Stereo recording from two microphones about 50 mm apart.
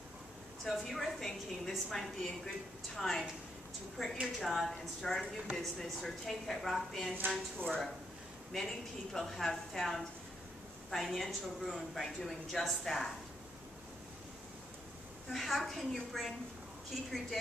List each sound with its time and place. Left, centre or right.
0.7 s a woman's voice: centre
7.2 s speech: right
7.6 s a woman's voice: centre
15.3 s a woman's voice: centre